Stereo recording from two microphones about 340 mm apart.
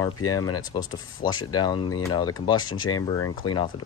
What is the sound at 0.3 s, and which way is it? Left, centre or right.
Speech, centre.